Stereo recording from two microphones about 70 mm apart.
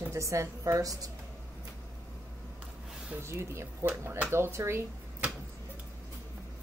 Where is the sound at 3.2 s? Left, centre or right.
Right.